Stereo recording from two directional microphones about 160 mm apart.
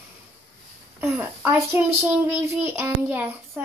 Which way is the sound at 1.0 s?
10° right (ahead or behind).